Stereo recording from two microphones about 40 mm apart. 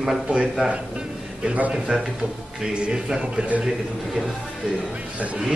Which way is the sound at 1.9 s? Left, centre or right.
Right.